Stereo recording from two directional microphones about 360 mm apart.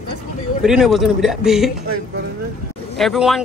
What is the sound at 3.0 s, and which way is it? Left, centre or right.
Speech, centre.